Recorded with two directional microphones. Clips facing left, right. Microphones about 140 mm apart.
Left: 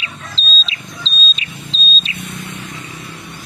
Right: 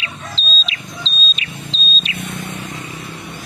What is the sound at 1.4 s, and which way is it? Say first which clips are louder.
Vehicle: right 1 dB; 25° left (ahead or behind).